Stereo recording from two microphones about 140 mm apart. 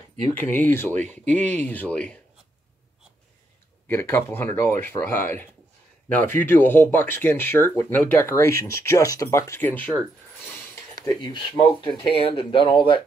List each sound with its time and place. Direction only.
0.3 s speech: 15° left (ahead or behind)
1.2 s speech: 55° right (ahead or behind)
1.5 s speech: 10° left (ahead or behind)
3.8 s speech: 20° left (ahead or behind)
11.0 s speech: 30° left (ahead or behind)
12.1 s speech: 40° left (ahead or behind)